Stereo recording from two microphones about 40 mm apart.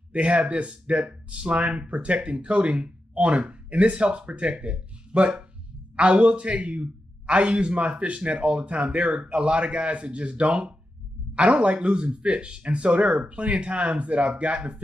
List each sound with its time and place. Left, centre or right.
0.1 s speech: right